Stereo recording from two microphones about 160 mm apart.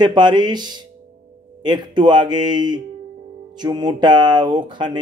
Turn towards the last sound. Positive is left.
turn(degrees=-30)  # may be behind; listen again after turning